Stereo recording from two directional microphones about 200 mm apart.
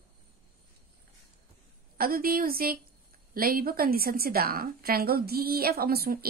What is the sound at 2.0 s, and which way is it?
A woman's voice, 45° right (ahead or behind).